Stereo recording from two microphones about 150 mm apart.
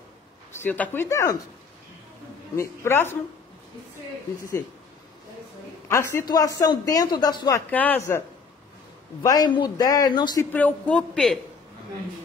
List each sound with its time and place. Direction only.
0.6 s speech: 15° left (ahead or behind)
2.5 s speech: 20° left (ahead or behind)
5.9 s speech: 15° left (ahead or behind)
7.7 s speech: 10° left (ahead or behind)
9.2 s speech: 25° left (ahead or behind)
10.5 s speech: 10° left (ahead or behind)